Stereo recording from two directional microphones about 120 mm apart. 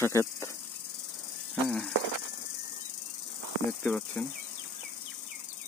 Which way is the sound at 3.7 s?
10° left (ahead or behind).